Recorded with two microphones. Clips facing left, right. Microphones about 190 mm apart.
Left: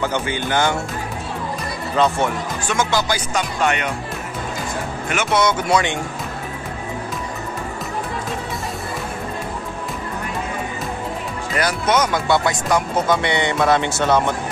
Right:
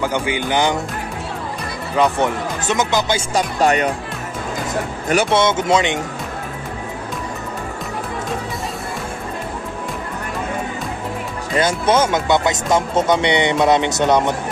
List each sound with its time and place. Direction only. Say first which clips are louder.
0.0 s speech: right 2 dB; 15° right (ahead or behind)
2.0 s speech: right 2 dB; 15° right (ahead or behind)
3.3 s speech: right 5 dB; 35° right (ahead or behind)
5.0 s speech: right 3 dB; 35° right (ahead or behind)
11.5 s speech: right 3 dB; 25° right (ahead or behind)